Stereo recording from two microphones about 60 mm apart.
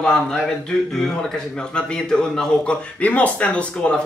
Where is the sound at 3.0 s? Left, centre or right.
Left.